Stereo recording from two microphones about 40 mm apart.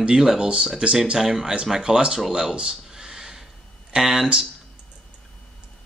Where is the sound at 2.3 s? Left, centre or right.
Right.